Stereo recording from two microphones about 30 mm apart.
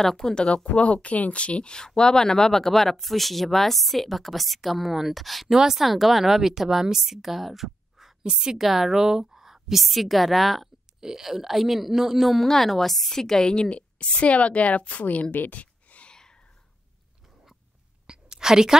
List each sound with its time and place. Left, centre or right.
0.2 s speech: left
1.0 s speech: left
1.4 s speech: left; by 5.5 s centre
5.5 s a woman's voice: centre
8.3 s a woman's voice: centre
8.6 s a woman's voice: centre
9.8 s speech: centre
11.0 s a woman's voice: centre
12.4 s a woman's voice: centre
13.4 s speech: left
13.7 s a woman's voice: left
15.5 s a sound: left
16.1 s whispering: left
18.0 s whispering: right